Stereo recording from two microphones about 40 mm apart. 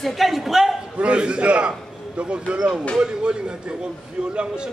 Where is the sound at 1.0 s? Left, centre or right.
Right.